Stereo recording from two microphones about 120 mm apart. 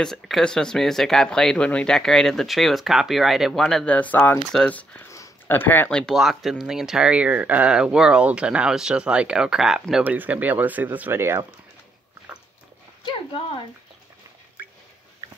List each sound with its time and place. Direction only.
0.0 s speech: 5° left (ahead or behind)
3.9 s speech: 15° left (ahead or behind)
5.1 s a sound: 20° left (ahead or behind)
5.9 s speech: 5° left (ahead or behind)
10.0 s speech: 15° right (ahead or behind)